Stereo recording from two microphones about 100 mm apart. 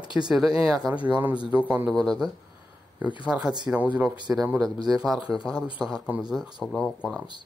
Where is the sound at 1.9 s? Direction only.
5° left (ahead or behind).